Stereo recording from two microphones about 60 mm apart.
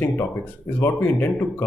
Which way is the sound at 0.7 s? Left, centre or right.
Left.